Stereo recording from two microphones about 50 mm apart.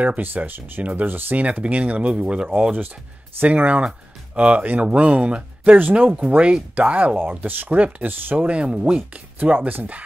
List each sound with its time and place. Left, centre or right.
0.2 s speech: right
1.4 s speech: right
6.1 s speech: right
7.4 s speech: right
8.4 s speech: right
9.4 s speech: right